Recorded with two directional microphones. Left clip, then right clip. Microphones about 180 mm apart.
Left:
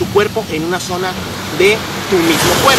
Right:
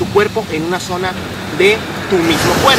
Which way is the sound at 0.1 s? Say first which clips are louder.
Right 1 dB; 5° right (ahead or behind).